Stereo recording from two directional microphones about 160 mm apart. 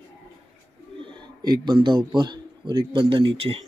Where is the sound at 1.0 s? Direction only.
25° right (ahead or behind).